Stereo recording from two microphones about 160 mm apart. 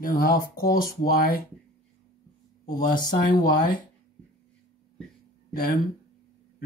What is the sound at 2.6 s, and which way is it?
Speech, 25° left (ahead or behind).